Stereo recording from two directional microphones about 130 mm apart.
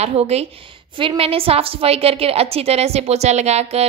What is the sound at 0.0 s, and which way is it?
Speech, 55° right (ahead or behind).